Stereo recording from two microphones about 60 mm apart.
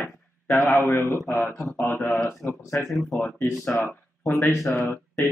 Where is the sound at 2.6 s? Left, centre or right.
Left.